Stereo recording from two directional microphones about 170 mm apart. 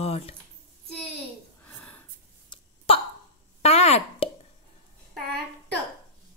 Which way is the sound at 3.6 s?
40° left (ahead or behind).